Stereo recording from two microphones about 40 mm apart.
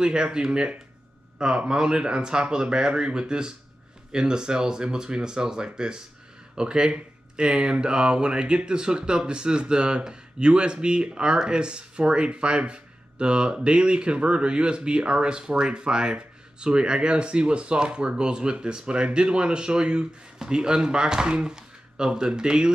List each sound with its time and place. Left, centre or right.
0.0 s speech: right